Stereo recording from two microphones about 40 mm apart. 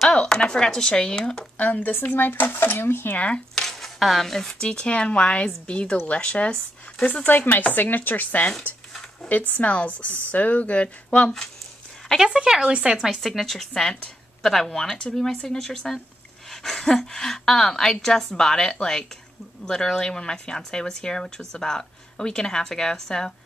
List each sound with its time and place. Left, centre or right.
0.1 s speech: left
1.6 s speech: left
1.9 s speech: left
2.8 s speech: left
3.2 s speech: left
3.6 s a sound: centre
4.5 s speech: left
7.2 s speech: left
12.6 s speech: right
13.0 s speech: centre